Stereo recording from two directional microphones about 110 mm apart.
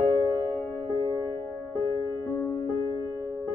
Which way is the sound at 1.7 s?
30° left (ahead or behind).